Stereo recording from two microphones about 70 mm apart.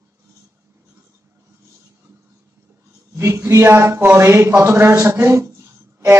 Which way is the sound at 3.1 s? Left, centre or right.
Right.